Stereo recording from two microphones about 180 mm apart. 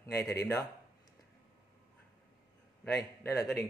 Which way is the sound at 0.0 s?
15° left (ahead or behind).